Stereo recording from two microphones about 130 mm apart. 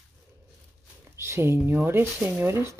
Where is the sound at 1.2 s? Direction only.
20° right (ahead or behind).